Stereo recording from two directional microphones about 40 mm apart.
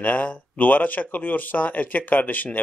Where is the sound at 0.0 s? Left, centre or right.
Left.